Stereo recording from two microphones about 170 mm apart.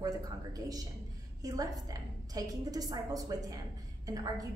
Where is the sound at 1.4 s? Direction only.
20° right (ahead or behind).